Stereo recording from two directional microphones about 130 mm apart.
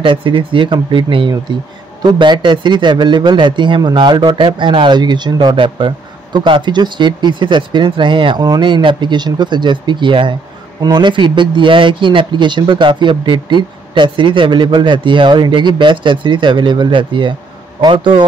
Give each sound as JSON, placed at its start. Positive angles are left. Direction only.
{"t": 0.0, "sound": "a man's voice", "side_deg": -40}